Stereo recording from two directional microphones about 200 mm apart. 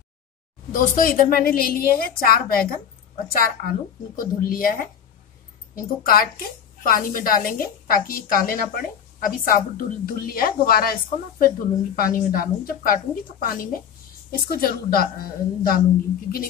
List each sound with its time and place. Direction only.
0.7 s a woman's voice: 45° left (ahead or behind)
6.0 s a woman's voice: 45° left (ahead or behind)